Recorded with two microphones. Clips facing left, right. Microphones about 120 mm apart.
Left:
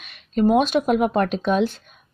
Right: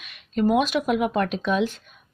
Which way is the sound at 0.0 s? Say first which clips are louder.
Left 3 dB; 35° left (ahead or behind).